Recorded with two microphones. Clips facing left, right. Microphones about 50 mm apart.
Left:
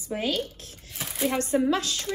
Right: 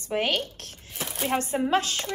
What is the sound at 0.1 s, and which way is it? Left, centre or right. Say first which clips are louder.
Speech: right 3 dB; right.